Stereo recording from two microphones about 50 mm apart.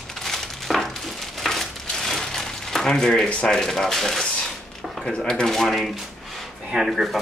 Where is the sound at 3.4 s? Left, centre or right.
Centre.